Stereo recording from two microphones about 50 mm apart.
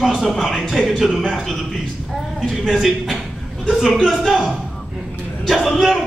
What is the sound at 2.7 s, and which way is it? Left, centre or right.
A man's voice, centre.